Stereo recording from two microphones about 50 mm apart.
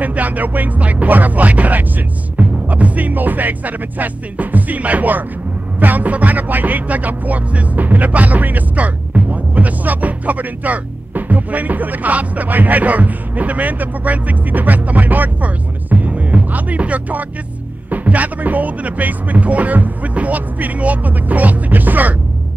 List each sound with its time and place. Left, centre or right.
0.0 s speech: right